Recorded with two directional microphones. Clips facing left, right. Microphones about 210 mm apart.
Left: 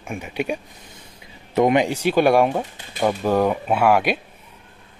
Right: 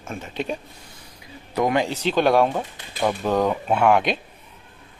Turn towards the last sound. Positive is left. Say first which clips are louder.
# left 1 dB
turn(degrees=5)  # may be behind; listen again after turning